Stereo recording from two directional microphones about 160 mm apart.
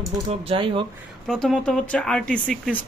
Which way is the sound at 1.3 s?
5° left (ahead or behind).